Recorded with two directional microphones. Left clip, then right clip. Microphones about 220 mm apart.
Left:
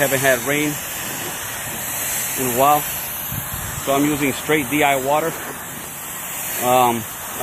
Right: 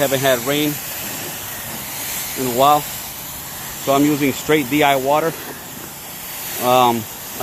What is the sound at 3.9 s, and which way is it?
Speech, 20° right (ahead or behind).